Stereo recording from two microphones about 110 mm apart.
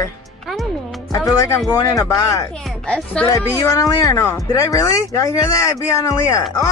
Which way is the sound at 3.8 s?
30° left (ahead or behind).